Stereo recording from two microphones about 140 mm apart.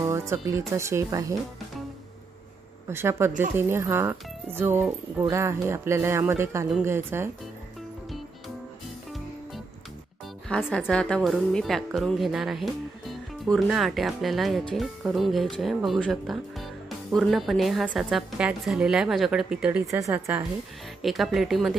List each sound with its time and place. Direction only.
0.0 s speech: 20° right (ahead or behind)
2.9 s speech: 15° right (ahead or behind)
10.5 s speech: 10° left (ahead or behind); by 19.8 s 5° right (ahead or behind)
19.9 s speech: 20° right (ahead or behind)
21.0 s speech: centre (ahead or behind)